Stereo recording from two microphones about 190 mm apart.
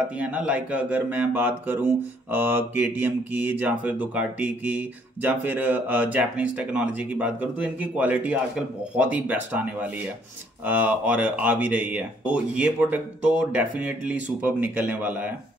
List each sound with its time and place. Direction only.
0.2 s speech: 5° right (ahead or behind)